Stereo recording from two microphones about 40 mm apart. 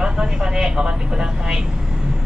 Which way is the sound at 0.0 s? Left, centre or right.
Centre.